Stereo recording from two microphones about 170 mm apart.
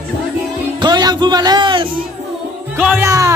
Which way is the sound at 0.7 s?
25° right (ahead or behind).